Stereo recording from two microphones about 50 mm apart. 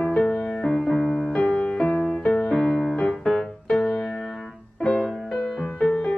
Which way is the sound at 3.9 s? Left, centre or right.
Left.